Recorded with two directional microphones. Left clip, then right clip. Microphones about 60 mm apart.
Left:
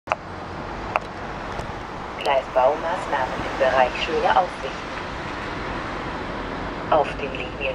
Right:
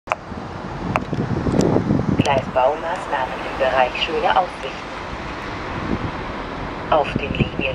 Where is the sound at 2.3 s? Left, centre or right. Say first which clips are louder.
Left 1 dB; centre.